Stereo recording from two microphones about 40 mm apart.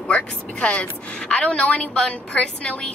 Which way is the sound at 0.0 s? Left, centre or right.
Left.